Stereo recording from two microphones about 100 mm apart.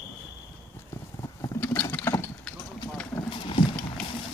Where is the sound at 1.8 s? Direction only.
15° left (ahead or behind).